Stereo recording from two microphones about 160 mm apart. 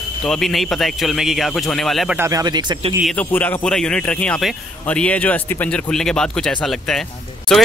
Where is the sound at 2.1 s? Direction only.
20° right (ahead or behind).